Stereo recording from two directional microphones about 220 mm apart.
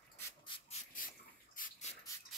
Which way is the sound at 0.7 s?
40° left (ahead or behind).